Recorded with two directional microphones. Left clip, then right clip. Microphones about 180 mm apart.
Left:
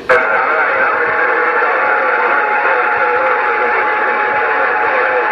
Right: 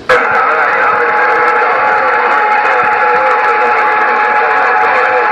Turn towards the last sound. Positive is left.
turn(degrees=-40)  # may be behind; listen again after turning